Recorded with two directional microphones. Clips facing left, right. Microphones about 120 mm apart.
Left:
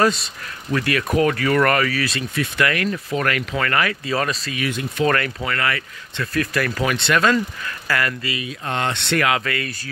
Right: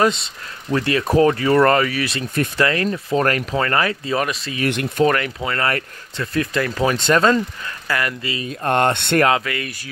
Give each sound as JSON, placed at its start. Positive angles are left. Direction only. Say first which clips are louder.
{"t": 0.0, "sound": "speech", "louder": "right 1 dB", "side_deg": -25}
{"t": 4.2, "sound": "speech", "louder": "right 2 dB", "side_deg": -15}
{"t": 8.4, "sound": "speech", "louder": "right 10 dB", "side_deg": -50}
{"t": 9.4, "sound": "speech", "louder": "left 1 dB", "side_deg": -15}